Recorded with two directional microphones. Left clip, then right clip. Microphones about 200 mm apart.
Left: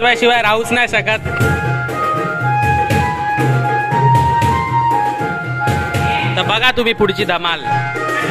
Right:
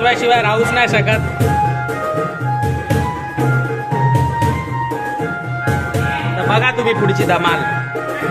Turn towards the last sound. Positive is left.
turn(degrees=30)  # may be behind; listen again after turning